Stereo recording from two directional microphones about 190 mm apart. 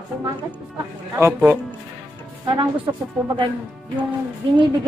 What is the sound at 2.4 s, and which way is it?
Speech, 25° right (ahead or behind).